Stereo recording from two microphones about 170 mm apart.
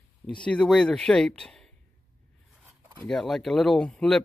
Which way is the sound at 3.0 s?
Centre (ahead or behind).